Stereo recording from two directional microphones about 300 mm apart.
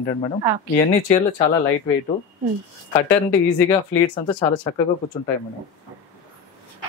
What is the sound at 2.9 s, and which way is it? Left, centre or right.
Speech, centre.